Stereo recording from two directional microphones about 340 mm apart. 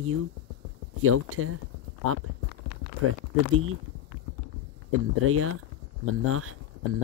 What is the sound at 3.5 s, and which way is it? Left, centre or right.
Speech, right.